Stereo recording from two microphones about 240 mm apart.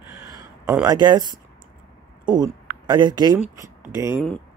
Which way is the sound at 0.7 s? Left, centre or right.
Centre.